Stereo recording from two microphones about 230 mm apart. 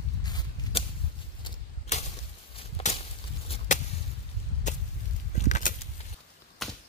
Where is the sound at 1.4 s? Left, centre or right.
Left.